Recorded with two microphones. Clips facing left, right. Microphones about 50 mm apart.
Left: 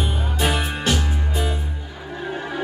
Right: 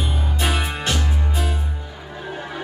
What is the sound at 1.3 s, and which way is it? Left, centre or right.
Music, centre.